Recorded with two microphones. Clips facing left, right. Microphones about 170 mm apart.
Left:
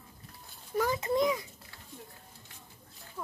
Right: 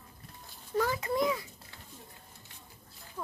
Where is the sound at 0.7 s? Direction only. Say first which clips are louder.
Left 1 dB; 15° left (ahead or behind).